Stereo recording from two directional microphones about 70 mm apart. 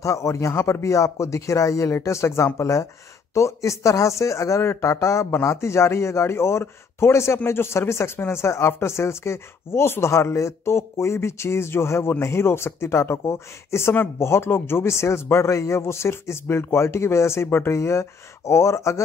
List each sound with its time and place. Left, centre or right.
0.0 s speech: left